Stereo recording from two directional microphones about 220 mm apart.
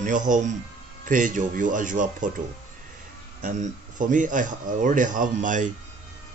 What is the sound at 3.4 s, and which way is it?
Speech, 35° right (ahead or behind).